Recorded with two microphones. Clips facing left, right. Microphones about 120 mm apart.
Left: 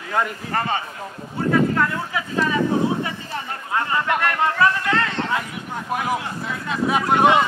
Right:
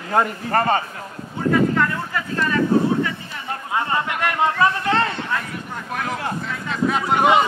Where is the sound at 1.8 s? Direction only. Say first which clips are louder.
Even; 5° left (ahead or behind).